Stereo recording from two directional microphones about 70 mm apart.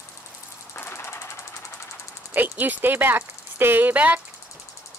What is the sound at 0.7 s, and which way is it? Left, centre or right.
Jackhammer, left.